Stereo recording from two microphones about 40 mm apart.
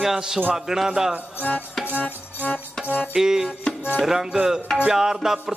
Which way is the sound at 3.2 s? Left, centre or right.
Centre.